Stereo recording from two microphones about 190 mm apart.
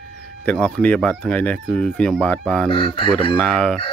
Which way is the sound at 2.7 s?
25° left (ahead or behind).